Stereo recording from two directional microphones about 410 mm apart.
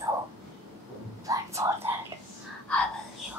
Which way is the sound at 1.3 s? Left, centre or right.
Centre.